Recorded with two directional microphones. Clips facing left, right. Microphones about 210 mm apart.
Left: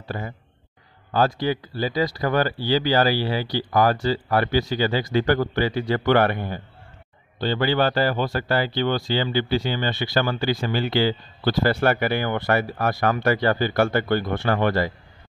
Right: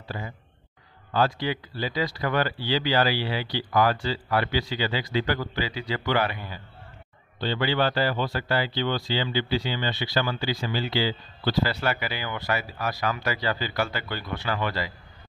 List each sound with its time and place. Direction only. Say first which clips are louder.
0.1 s speech: left 4 dB; 50° left (ahead or behind)